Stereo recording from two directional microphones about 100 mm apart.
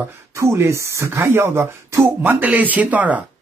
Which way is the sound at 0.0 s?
25° right (ahead or behind).